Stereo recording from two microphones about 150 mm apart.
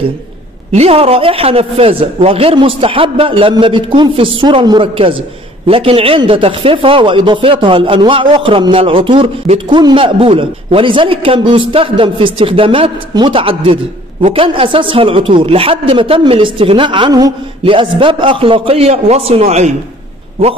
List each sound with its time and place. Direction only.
0.7 s speech: 40° right (ahead or behind)